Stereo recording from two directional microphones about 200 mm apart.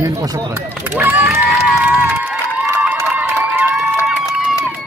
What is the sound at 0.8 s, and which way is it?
Crowd, 10° right (ahead or behind).